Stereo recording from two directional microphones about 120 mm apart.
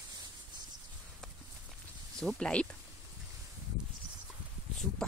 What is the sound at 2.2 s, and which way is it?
Speech, 5° left (ahead or behind).